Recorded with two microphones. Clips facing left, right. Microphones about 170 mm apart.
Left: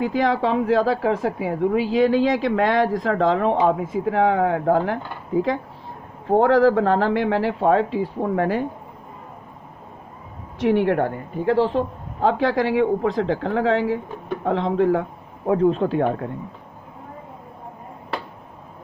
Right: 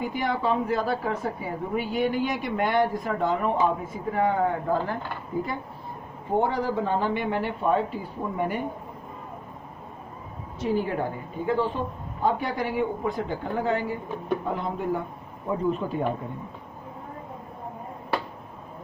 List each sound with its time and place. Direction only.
0.0 s a woman's voice: 90° left
10.6 s a woman's voice: 75° left (ahead or behind)